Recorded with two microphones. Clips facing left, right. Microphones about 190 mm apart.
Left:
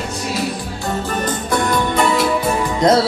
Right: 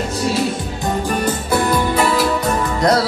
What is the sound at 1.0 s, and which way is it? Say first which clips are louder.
Music: right 1 dB; 10° right (ahead or behind).